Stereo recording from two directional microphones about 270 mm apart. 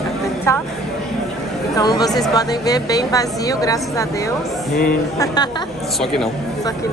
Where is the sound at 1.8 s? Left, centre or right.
Centre.